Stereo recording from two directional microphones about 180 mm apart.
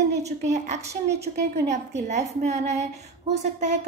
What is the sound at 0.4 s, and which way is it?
A woman's voice, 40° right (ahead or behind).